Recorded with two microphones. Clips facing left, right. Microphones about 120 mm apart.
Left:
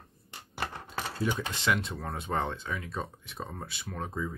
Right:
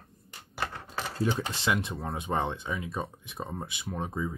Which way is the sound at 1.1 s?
40° right (ahead or behind).